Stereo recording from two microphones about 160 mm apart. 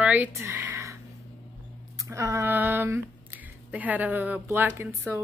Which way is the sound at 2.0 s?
20° right (ahead or behind).